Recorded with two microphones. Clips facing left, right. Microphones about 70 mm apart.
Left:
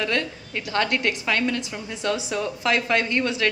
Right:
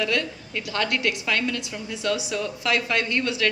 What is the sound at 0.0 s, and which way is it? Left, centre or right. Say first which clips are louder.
A woman's voice: even; left.